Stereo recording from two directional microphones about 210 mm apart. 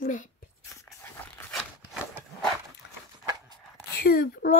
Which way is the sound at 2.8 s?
55° left (ahead or behind).